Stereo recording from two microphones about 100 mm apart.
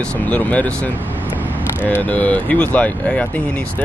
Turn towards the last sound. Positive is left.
turn(degrees=15)  # may be behind; listen again after turning